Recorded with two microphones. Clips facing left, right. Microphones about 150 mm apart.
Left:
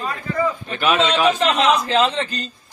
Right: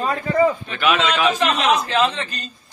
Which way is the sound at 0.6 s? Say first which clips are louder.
Left 1 dB; 40° left (ahead or behind).